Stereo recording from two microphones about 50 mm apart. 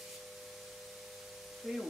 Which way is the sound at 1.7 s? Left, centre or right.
Centre.